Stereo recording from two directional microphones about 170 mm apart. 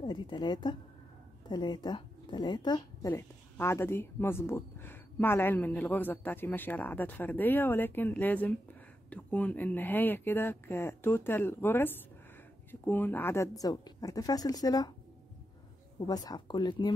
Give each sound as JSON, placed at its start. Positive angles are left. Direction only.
{"t": 0.0, "sound": "a woman's voice", "side_deg": 25}
{"t": 16.1, "sound": "speech", "side_deg": 25}